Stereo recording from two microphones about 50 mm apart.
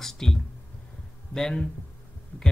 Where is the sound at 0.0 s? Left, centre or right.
Centre.